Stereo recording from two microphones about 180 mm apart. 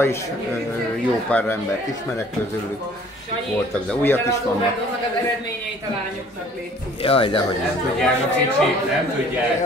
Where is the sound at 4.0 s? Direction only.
10° left (ahead or behind).